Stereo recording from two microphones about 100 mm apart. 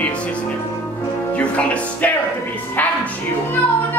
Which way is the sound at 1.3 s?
15° left (ahead or behind).